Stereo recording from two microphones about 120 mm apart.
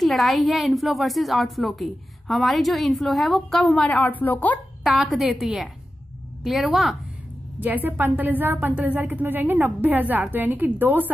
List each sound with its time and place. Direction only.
0.0 s a woman's voice: centre (ahead or behind)
4.8 s a woman's voice: 5° right (ahead or behind)
7.6 s a woman's voice: 15° right (ahead or behind)